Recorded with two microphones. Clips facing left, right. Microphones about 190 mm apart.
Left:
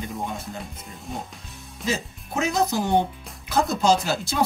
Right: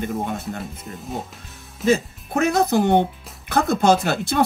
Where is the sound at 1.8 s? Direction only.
60° right (ahead or behind).